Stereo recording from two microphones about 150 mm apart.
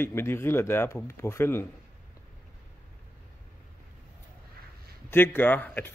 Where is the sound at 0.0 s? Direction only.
15° left (ahead or behind).